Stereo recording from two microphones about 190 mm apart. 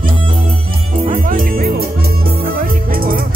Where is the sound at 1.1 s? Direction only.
50° right (ahead or behind).